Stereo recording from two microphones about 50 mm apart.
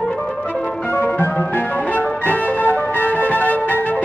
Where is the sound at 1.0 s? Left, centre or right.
Left.